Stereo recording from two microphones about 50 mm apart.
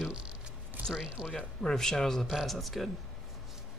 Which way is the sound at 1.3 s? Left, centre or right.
Centre.